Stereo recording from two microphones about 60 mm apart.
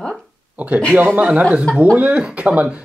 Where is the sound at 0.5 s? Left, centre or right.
Right.